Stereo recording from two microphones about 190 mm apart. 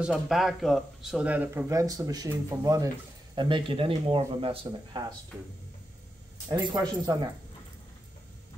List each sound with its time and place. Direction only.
0.0 s speech: centre (ahead or behind); by 5.0 s 30° right (ahead or behind)
6.5 s speech: 25° right (ahead or behind)